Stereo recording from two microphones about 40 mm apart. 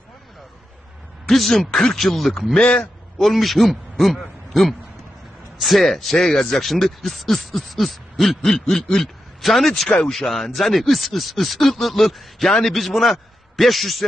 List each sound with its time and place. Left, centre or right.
1.2 s speech: centre
2.0 s speech: centre
2.6 s a man's voice: left
3.2 s speech: centre
5.6 s speech: centre
9.8 s speech: centre
10.1 s a man's voice: centre